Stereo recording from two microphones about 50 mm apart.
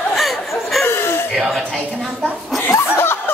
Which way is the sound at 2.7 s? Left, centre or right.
Left.